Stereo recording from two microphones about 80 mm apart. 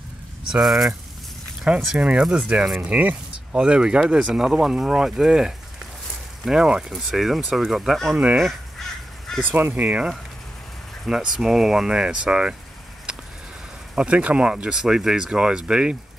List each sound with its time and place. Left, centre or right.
0.5 s speech: centre
2.0 s speech: centre
8.4 s caw: centre
9.4 s speech: right
11.1 s speech: centre
13.1 s a sound: centre
13.9 s speech: centre